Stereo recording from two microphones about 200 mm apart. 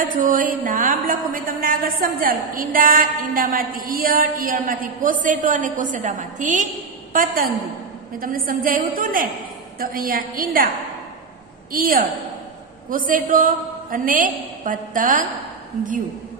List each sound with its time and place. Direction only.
0.2 s a woman's voice: 40° right (ahead or behind)
11.7 s a woman's voice: 45° right (ahead or behind)